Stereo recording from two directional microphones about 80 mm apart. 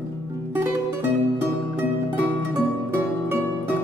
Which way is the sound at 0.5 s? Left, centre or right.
Right.